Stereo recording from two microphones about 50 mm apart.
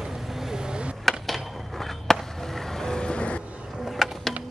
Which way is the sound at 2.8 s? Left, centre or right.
Centre.